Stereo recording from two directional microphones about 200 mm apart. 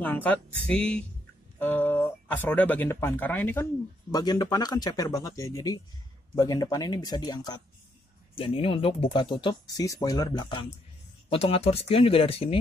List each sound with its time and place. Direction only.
0.0 s speech: 10° left (ahead or behind)
4.1 s speech: 20° left (ahead or behind)